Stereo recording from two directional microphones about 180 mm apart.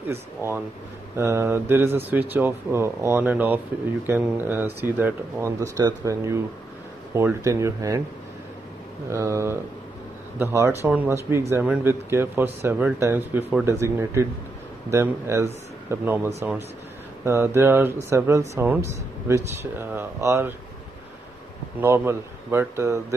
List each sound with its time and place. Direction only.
0.1 s speech: 15° right (ahead or behind)
9.1 s speech: 15° right (ahead or behind)
21.7 s speech: 15° right (ahead or behind)